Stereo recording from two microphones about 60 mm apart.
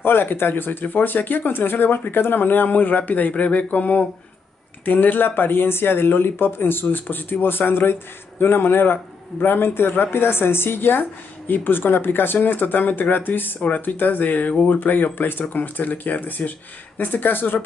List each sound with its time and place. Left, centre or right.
0.0 s speech: left